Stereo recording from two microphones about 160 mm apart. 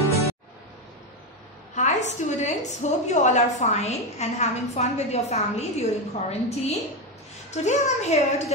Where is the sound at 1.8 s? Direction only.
50° left (ahead or behind).